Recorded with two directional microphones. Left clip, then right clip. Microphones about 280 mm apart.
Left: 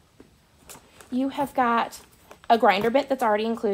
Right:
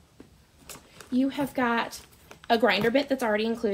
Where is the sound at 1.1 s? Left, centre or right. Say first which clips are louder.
Left 3 dB; centre.